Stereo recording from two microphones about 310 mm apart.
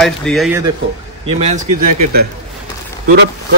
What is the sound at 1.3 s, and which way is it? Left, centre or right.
Speech, right.